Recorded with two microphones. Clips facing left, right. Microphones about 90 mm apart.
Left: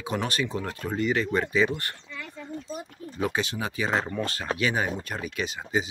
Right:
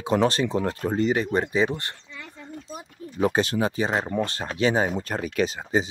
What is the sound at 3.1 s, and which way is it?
Speech, 35° right (ahead or behind).